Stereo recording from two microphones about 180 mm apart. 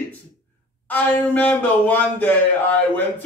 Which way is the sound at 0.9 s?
10° left (ahead or behind).